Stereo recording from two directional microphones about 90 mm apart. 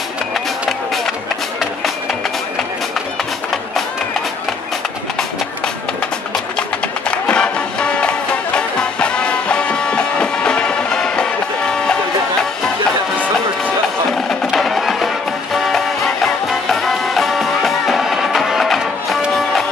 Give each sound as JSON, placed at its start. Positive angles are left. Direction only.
{"t": 7.1, "sound": "music", "side_deg": 15}
{"t": 14.1, "sound": "music", "side_deg": 5}